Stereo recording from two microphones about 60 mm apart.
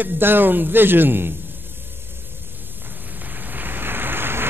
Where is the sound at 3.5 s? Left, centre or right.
Right.